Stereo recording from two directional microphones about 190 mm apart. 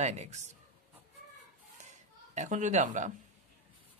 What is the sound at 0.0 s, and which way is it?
Speech, 35° right (ahead or behind).